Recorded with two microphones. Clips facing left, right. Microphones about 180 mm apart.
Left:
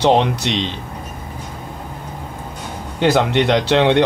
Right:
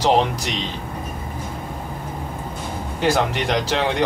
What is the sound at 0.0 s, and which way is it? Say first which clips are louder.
Speech: left 3 dB; 70° left (ahead or behind).